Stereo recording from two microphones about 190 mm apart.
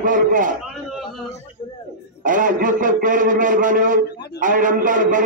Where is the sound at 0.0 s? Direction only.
45° right (ahead or behind).